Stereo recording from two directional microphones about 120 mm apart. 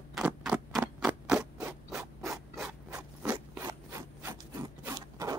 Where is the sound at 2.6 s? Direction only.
10° right (ahead or behind).